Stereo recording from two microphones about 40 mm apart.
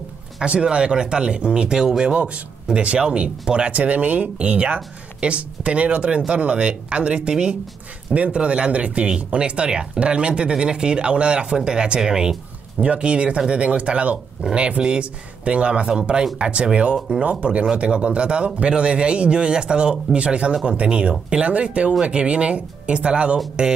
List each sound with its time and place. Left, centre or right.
0.4 s speech: right
2.1 s speech: right; by 12.4 s centre
12.8 s speech: right